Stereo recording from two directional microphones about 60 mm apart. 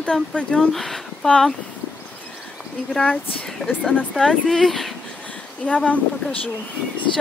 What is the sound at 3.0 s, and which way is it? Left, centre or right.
A woman's voice, centre.